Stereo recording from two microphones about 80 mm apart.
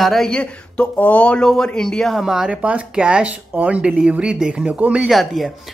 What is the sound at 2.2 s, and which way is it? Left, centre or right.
Speech, centre.